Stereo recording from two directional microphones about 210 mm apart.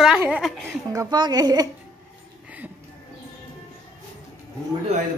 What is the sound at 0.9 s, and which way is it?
Speech, 20° right (ahead or behind).